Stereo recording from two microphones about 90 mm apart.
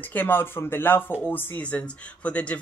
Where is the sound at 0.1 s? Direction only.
20° left (ahead or behind).